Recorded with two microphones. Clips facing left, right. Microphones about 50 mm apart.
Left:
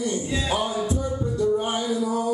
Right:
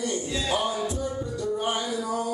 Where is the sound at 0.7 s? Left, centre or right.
Left.